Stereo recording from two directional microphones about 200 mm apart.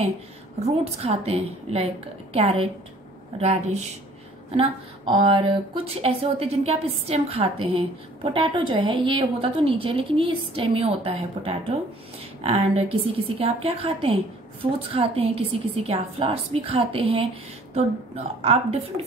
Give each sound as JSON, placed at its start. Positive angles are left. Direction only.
{"t": 0.9, "sound": "a woman's voice", "side_deg": -30}